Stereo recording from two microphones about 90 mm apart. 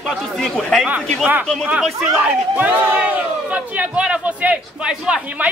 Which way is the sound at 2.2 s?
15° right (ahead or behind).